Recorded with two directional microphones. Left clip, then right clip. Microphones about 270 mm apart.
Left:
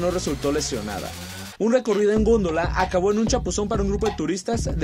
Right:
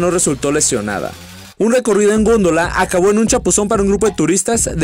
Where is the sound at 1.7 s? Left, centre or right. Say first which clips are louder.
Right 7 dB; right.